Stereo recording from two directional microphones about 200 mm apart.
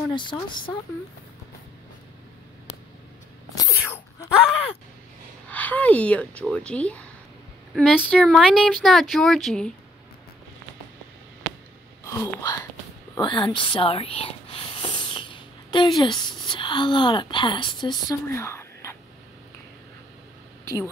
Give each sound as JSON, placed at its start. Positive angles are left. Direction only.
{"t": 0.1, "sound": "speech", "side_deg": 25}
{"t": 3.5, "sound": "sneeze", "side_deg": 15}
{"t": 5.5, "sound": "speech", "side_deg": 10}
{"t": 12.0, "sound": "speech", "side_deg": 15}
{"t": 20.6, "sound": "speech", "side_deg": 15}